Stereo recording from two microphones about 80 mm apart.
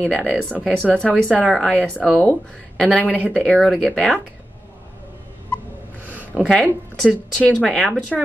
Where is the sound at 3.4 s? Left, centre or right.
Centre.